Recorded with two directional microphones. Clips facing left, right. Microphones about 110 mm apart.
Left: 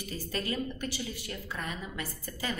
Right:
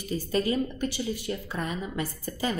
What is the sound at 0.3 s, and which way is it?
A woman's voice, 20° right (ahead or behind).